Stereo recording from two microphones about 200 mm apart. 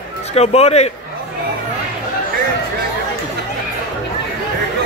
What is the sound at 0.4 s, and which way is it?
Speech, 30° left (ahead or behind).